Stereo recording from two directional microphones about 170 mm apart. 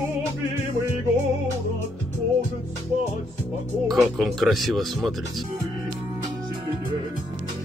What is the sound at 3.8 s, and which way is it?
Speech, centre (ahead or behind).